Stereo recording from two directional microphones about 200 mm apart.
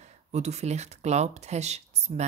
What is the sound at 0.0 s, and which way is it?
Speech, 35° right (ahead or behind).